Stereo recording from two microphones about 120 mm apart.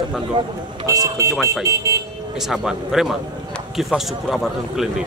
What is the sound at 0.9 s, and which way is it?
Speech, 30° right (ahead or behind).